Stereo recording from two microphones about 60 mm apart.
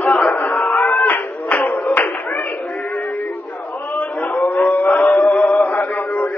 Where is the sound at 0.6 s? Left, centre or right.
Left.